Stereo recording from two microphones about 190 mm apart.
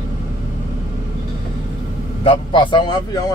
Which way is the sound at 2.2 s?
25° left (ahead or behind).